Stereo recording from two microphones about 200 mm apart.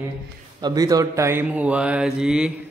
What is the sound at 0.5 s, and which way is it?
Speech, 20° right (ahead or behind).